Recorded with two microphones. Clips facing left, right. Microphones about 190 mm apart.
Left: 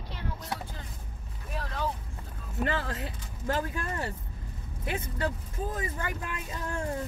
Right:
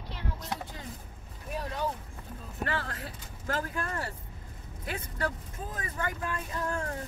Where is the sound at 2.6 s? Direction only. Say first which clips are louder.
Left 3 dB; 20° left (ahead or behind).